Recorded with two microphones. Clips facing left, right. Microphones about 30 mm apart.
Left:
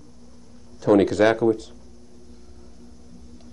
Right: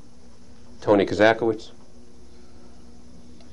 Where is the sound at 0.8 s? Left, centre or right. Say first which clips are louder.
Left 1 dB; centre.